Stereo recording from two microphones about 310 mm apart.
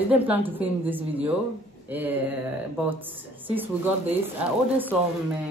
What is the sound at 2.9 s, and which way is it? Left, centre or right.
Speech, centre.